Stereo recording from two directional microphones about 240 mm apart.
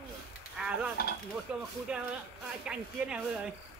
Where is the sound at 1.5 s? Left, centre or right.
Centre.